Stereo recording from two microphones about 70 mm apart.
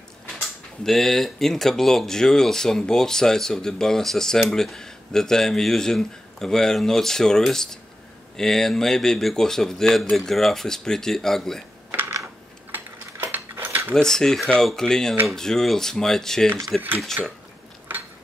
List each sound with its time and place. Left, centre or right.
0.8 s speech: centre
12.7 s mechanisms: right
13.9 s speech: centre
17.2 s speech: right
17.9 s a sound: right